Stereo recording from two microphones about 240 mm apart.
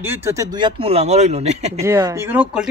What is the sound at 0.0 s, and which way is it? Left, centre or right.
Speech, centre.